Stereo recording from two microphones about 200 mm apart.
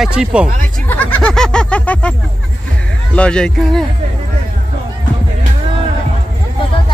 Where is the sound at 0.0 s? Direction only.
5° right (ahead or behind).